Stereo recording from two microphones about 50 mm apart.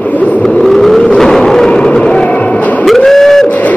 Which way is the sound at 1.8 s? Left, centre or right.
Centre.